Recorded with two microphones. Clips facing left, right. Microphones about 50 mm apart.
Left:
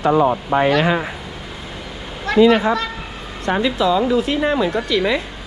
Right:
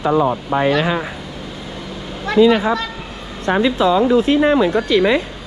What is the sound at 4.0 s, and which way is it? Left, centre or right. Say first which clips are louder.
Speech: right 4 dB; right.